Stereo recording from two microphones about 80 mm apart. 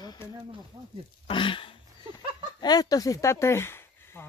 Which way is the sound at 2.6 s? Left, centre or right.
Left.